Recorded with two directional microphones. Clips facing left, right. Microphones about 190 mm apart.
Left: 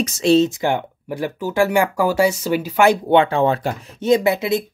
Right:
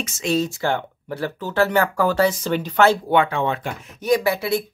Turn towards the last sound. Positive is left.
turn(degrees=20)  # may be behind; listen again after turning